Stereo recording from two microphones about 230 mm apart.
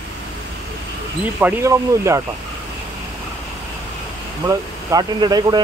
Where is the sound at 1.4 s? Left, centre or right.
Centre.